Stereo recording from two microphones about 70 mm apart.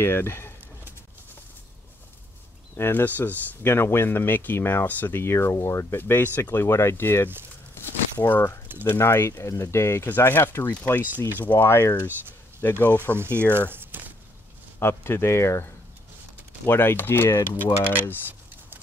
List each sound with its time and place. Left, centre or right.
0.0 s speech: left
2.7 s speech: left
6.6 s speech: left
7.7 s a sound: left
8.8 s speech: left
11.5 s speech: left
13.2 s speech: right
13.6 s a sound: right
14.8 s speech: left
16.6 s speech: left